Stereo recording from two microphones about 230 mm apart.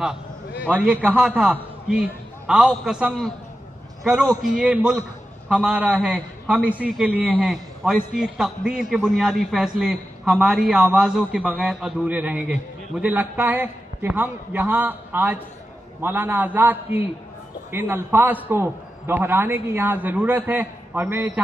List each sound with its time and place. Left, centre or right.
0.7 s a man's voice: centre